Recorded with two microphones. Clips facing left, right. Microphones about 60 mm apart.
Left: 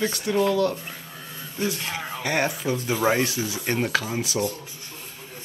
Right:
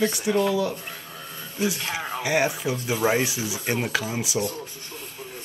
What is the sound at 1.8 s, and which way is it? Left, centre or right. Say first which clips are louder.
Speech: right 2 dB; centre.